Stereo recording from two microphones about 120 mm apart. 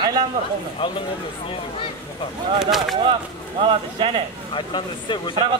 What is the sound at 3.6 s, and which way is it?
Speech, 45° right (ahead or behind).